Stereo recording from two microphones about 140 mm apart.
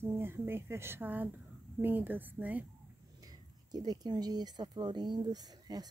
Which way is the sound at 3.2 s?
30° right (ahead or behind).